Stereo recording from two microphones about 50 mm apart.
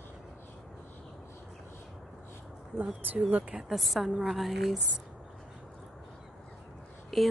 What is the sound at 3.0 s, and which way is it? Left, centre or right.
Speech, right.